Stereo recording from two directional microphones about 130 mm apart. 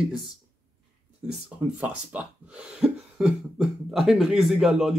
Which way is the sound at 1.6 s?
10° right (ahead or behind).